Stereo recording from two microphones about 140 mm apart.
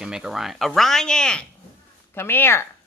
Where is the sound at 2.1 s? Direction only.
15° left (ahead or behind).